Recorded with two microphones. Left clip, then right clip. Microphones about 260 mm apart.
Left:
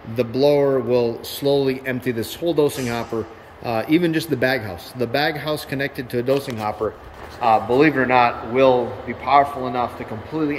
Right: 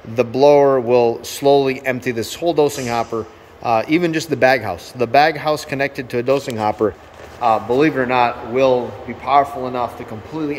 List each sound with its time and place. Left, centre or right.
0.1 s a man's voice: centre
6.8 s speech: right
7.3 s a man's voice: centre